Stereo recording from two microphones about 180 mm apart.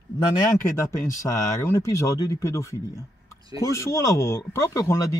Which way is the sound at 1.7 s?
15° left (ahead or behind).